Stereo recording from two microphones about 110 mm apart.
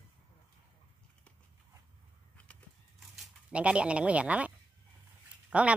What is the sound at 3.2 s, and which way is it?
Speech, 10° right (ahead or behind).